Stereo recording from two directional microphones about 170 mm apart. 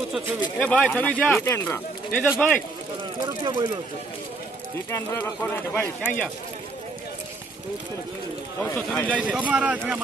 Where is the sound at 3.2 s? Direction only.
25° right (ahead or behind).